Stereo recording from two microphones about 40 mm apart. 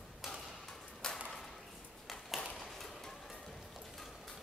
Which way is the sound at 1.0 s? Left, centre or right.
Centre.